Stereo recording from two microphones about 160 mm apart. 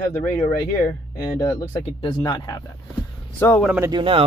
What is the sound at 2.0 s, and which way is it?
Speech, 30° left (ahead or behind).